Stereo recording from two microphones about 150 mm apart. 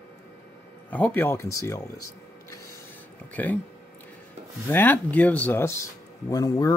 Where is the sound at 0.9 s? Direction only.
10° left (ahead or behind).